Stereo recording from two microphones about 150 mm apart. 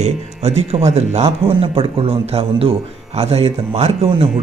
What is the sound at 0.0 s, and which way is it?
Speech, 45° right (ahead or behind).